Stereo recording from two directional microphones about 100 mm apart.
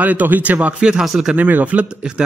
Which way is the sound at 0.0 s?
15° right (ahead or behind).